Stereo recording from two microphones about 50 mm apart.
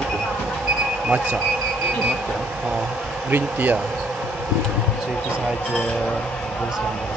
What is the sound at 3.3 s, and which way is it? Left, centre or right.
Speech, right.